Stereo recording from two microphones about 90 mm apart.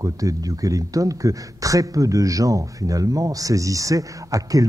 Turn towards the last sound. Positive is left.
turn(degrees=-40)  # may be behind; listen again after turning